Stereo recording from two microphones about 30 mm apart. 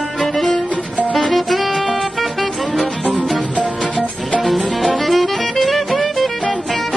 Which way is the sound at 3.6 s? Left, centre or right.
Left.